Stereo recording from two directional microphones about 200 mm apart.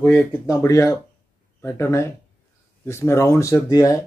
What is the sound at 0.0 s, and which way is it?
Speech, 10° left (ahead or behind).